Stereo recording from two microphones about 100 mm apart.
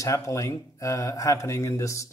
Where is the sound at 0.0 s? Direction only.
30° left (ahead or behind).